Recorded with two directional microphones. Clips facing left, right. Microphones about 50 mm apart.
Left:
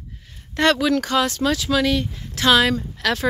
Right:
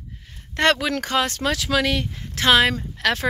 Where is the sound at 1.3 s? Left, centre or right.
Right.